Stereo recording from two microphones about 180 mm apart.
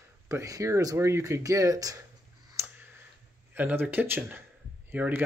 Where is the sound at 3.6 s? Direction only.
10° right (ahead or behind).